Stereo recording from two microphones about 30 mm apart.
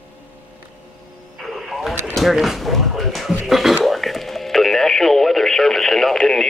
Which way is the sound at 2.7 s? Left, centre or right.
Centre.